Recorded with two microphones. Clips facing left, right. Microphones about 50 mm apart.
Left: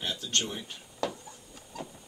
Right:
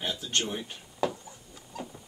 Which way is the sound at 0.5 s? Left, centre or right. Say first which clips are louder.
Right 3 dB; centre.